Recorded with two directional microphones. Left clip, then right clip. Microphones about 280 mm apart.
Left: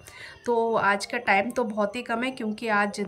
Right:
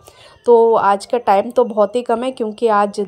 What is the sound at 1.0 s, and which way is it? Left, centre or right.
Speech, right.